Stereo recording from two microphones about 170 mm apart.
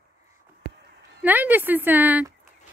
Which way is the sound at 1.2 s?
10° right (ahead or behind).